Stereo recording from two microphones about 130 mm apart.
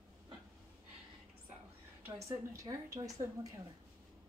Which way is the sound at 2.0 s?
25° right (ahead or behind).